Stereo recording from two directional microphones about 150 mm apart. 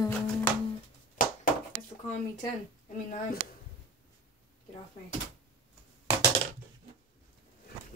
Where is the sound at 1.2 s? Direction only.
65° left (ahead or behind).